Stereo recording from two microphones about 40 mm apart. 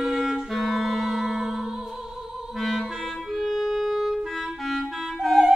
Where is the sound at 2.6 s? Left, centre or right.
Centre.